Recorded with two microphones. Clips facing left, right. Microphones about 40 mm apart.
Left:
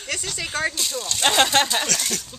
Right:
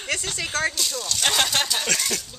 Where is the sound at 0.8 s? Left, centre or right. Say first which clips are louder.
Left 1 dB; left.